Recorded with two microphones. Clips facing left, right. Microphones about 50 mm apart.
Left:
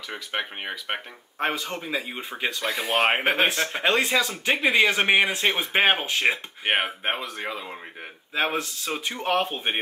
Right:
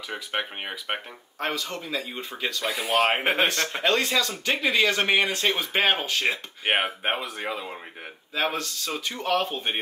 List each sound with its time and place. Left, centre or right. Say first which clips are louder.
0.1 s speech: even; centre
1.4 s speech: left 2 dB; centre
2.6 s speech: even; centre; by 6.4 s left
6.6 s speech: even; centre
8.4 s speech: left 1 dB; centre